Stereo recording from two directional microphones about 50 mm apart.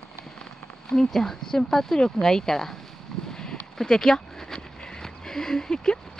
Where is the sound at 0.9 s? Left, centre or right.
Centre.